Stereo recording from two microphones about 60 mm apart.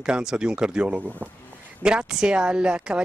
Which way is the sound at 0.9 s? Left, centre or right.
Right.